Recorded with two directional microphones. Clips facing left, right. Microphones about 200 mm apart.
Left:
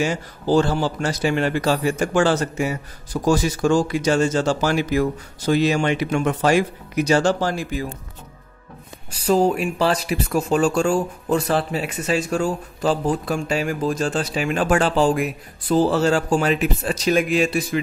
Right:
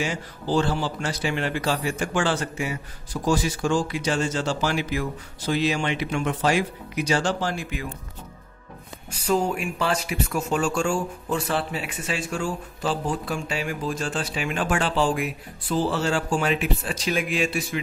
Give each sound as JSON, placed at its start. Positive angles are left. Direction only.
{"t": 0.0, "sound": "speech", "side_deg": 45}
{"t": 9.3, "sound": "speech", "side_deg": 35}